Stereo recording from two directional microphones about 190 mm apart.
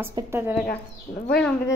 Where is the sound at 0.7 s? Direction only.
50° left (ahead or behind).